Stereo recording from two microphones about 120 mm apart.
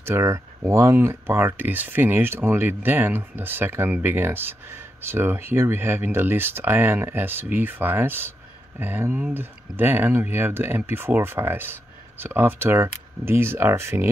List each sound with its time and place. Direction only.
0.0 s speech: 20° right (ahead or behind)